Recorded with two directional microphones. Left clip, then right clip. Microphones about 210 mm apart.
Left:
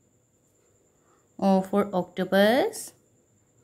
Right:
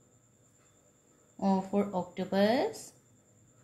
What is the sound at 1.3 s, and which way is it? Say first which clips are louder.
Speech: left 7 dB; 50° left (ahead or behind).